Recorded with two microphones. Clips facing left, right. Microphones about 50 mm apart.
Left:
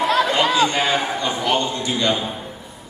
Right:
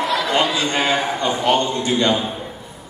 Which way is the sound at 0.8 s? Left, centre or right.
Right.